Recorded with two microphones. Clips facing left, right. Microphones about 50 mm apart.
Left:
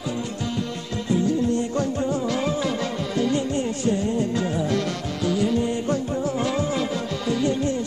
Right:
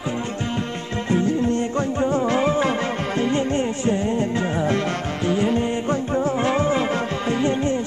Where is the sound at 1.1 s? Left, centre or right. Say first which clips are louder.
Right 1 dB; right.